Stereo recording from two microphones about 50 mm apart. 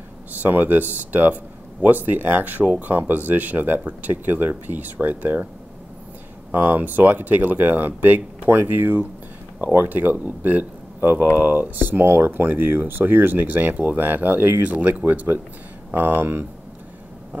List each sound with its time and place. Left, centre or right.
0.3 s speech: right
6.5 s speech: right